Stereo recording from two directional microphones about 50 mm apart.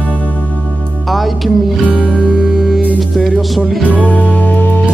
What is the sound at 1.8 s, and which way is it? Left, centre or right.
Music, left.